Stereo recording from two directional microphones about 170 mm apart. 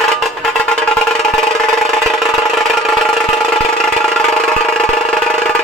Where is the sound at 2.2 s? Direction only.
Centre (ahead or behind).